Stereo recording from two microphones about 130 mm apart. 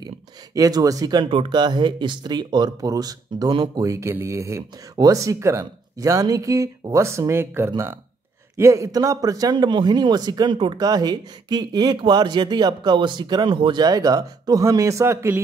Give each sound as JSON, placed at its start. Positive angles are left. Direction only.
{"t": 0.6, "sound": "a man's voice", "side_deg": -30}